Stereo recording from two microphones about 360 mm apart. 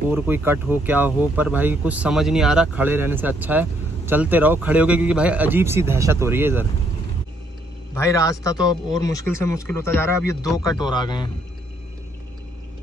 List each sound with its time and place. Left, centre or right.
0.1 s speech: centre
7.9 s speech: centre